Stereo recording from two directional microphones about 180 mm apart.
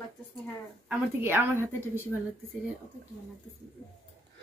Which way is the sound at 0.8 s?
10° right (ahead or behind).